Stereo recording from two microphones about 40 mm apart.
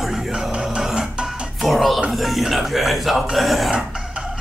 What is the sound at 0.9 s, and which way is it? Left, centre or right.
Music, right.